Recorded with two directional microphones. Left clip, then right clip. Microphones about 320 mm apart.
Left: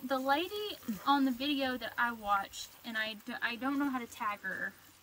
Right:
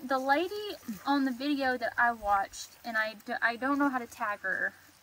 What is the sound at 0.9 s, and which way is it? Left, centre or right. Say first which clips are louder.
Speech: even; centre.